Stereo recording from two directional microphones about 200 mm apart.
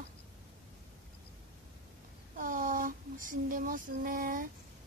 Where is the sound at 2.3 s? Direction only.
40° right (ahead or behind).